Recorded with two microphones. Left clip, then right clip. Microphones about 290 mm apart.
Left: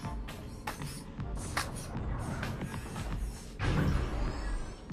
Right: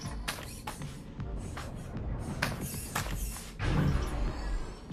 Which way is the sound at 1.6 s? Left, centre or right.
Left.